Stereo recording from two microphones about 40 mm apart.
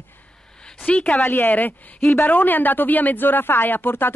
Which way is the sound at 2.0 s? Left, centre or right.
Left.